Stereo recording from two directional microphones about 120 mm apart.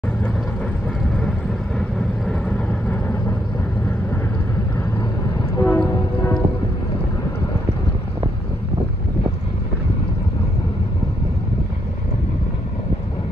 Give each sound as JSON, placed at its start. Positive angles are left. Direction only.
{"t": 1.8, "sound": "vehicle", "side_deg": 5}
{"t": 5.6, "sound": "music", "side_deg": 15}